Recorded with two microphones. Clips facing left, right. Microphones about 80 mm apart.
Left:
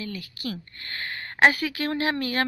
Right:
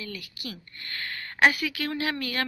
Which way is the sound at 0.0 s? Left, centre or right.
Left.